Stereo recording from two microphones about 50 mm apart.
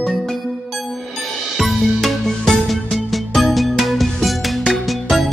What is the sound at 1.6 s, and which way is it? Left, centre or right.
Music, centre.